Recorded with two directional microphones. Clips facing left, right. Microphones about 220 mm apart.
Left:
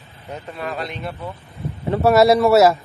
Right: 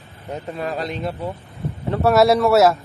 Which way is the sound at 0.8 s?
35° right (ahead or behind).